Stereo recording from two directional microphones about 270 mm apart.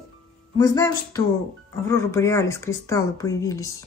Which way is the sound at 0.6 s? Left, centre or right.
Centre.